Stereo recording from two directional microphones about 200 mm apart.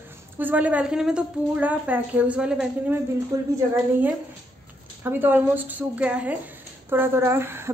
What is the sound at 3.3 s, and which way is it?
Speech, 15° right (ahead or behind).